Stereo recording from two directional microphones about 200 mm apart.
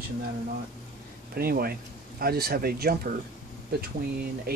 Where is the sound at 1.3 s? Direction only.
50° right (ahead or behind).